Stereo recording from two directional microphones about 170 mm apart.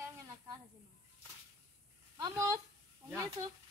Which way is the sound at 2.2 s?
20° right (ahead or behind).